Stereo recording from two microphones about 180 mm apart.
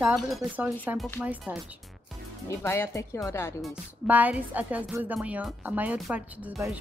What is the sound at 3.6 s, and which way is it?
A woman's voice, 10° right (ahead or behind).